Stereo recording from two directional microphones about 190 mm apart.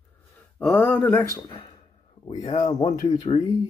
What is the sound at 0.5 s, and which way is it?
Speech, 10° left (ahead or behind).